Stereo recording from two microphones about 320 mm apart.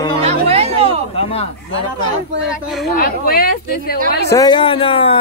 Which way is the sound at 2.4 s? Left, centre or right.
Centre.